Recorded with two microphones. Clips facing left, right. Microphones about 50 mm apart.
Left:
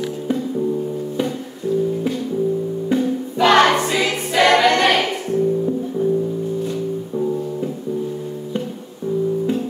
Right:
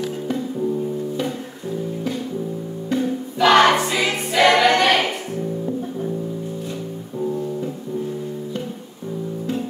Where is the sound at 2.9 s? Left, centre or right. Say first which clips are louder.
Left 2 dB; centre.